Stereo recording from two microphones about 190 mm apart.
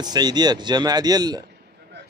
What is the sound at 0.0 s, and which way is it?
Speech, 20° right (ahead or behind).